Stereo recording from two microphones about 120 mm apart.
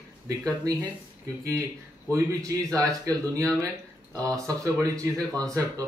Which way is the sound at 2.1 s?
25° right (ahead or behind).